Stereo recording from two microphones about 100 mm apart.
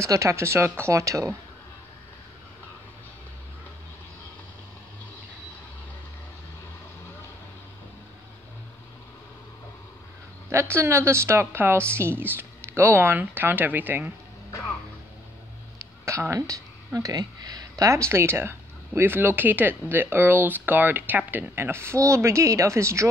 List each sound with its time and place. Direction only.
0.0 s speech: 30° right (ahead or behind)
10.5 s speech: 25° right (ahead or behind)
15.8 s speech: 30° right (ahead or behind)